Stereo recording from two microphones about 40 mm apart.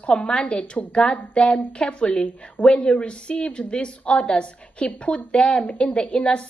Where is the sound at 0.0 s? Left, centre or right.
Left.